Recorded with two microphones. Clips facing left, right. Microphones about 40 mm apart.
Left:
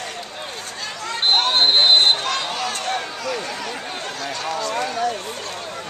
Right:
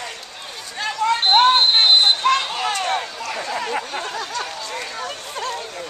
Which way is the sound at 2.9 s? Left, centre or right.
Centre.